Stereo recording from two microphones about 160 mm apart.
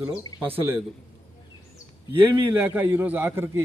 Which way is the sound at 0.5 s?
10° right (ahead or behind).